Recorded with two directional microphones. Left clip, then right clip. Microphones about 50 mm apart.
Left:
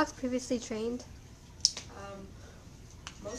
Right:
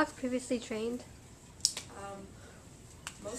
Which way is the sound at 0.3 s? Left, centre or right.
Left.